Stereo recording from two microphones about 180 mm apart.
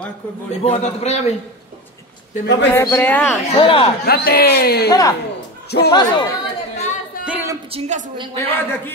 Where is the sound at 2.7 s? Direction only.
10° left (ahead or behind).